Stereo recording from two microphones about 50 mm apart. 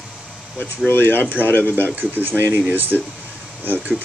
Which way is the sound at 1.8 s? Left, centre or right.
Right.